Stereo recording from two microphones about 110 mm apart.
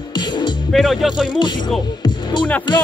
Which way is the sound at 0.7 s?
Centre (ahead or behind).